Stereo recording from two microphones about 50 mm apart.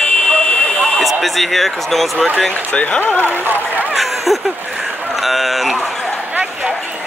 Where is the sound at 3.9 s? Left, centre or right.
Centre.